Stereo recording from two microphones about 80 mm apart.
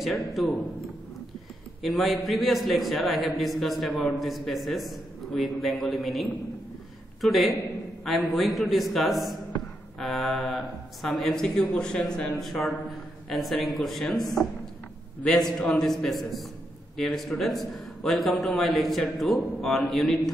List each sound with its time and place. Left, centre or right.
0.0 s a man's voice: centre
1.8 s a man's voice: centre